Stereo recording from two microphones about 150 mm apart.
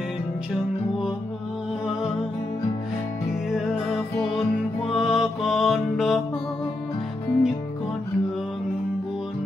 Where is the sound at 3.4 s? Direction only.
Centre (ahead or behind).